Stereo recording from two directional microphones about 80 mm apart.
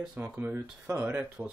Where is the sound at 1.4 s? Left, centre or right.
Right.